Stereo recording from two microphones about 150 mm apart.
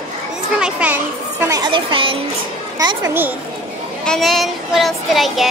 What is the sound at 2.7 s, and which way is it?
Speech, 25° right (ahead or behind).